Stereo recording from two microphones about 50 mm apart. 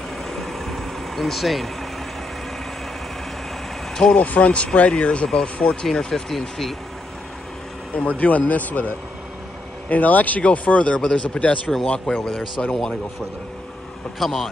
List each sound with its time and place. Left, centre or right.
0.3 s vehicle: centre
3.9 s vehicle: centre
4.2 s speech: left; by 6.7 s centre
8.2 s speech: left
11.0 s speech: centre
11.2 s speech: left
14.2 s a man's voice: centre